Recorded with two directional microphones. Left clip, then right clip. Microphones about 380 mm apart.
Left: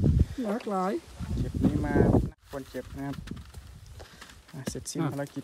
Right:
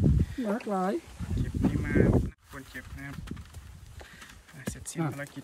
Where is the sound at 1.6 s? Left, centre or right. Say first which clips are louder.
Left 2 dB; centre.